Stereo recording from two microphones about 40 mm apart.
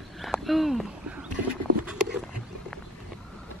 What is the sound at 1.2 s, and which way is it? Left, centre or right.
Rowboat, right.